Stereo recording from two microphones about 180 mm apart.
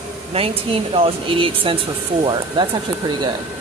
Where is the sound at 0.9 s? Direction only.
30° right (ahead or behind).